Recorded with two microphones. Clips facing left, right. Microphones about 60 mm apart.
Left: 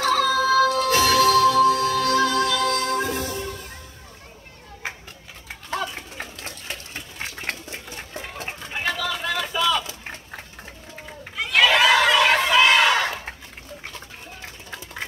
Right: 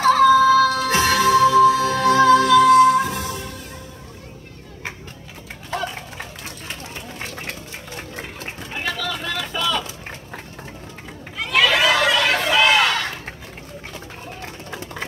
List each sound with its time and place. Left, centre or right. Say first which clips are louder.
0.0 s music: right 7 dB; right
8.4 s vehicle: left 2 dB; centre
11.3 s a sound: even; centre